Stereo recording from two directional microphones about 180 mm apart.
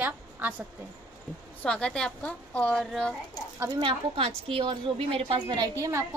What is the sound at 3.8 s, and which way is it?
A woman's voice, 30° right (ahead or behind).